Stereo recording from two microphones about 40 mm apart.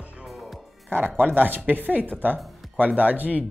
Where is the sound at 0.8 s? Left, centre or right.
Right.